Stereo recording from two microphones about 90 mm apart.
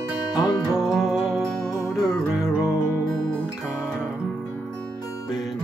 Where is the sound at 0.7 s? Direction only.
Centre (ahead or behind).